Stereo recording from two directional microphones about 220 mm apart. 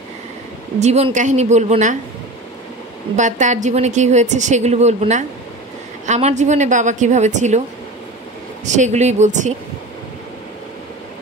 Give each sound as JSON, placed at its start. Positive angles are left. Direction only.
{"t": 0.7, "sound": "a woman's voice", "side_deg": -30}
{"t": 3.2, "sound": "a woman's voice", "side_deg": -35}
{"t": 8.6, "sound": "a woman's voice", "side_deg": -35}